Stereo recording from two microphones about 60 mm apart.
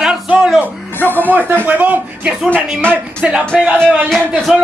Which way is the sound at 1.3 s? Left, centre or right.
Right.